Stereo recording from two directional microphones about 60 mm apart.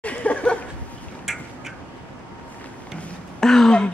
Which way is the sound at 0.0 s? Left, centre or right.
Left.